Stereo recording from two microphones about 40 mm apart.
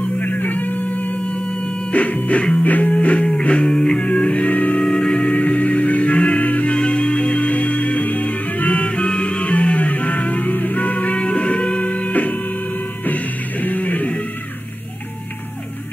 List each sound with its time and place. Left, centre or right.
0.0 s music: left
1.1 s music: left
3.6 s music: centre
4.0 s music: left
4.7 s music: centre
5.2 s music: left